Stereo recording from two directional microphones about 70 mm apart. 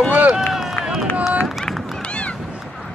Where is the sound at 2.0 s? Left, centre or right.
Centre.